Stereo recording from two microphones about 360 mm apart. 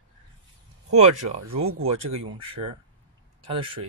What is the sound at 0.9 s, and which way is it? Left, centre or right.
Speech, centre.